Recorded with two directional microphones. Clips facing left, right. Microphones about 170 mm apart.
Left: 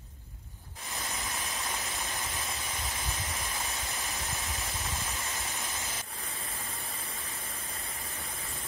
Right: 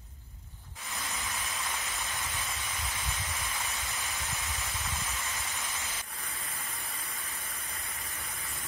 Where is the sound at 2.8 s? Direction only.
40° left (ahead or behind).